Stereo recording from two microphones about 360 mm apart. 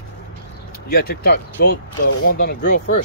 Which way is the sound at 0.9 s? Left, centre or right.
Left.